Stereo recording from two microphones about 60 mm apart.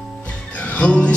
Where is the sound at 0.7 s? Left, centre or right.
Centre.